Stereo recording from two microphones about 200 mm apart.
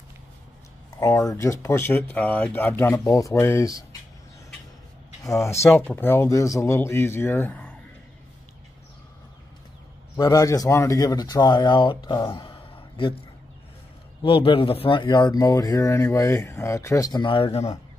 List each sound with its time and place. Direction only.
0.9 s speech: 15° left (ahead or behind)
5.2 s speech: 15° left (ahead or behind)
10.1 s speech: 20° left (ahead or behind)
14.2 s speech: 25° left (ahead or behind)